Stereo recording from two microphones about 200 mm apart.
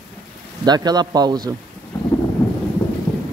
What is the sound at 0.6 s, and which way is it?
Speech, 20° right (ahead or behind).